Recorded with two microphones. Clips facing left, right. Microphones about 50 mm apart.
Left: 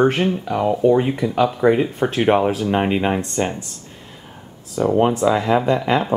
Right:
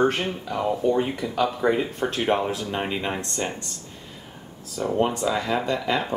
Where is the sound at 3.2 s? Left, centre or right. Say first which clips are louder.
Left 7 dB; centre.